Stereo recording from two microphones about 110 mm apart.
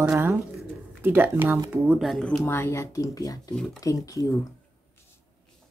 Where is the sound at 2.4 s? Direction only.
20° left (ahead or behind).